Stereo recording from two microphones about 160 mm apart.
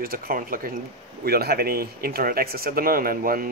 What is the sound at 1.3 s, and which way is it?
Speech, 75° right (ahead or behind).